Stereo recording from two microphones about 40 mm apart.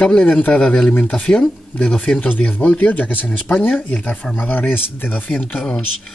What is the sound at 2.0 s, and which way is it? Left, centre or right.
Speech, left.